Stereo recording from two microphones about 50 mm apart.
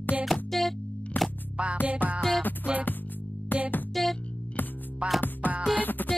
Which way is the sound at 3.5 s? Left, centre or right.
Left.